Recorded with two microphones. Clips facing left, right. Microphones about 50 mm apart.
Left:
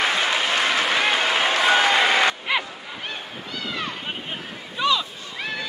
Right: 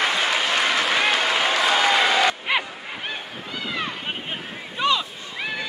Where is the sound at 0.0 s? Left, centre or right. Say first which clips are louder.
Even; centre.